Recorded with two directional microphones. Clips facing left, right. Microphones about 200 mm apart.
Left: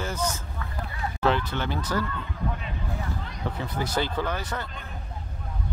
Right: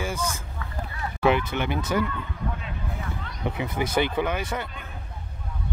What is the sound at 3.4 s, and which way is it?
A man's voice, 15° right (ahead or behind).